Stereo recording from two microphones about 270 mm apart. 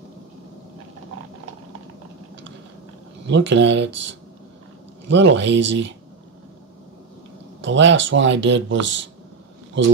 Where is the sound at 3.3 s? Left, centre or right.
Right.